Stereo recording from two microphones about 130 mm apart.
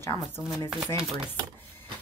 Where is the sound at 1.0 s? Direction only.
5° right (ahead or behind).